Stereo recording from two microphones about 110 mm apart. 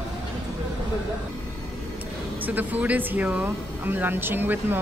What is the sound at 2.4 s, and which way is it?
Speech, 15° right (ahead or behind).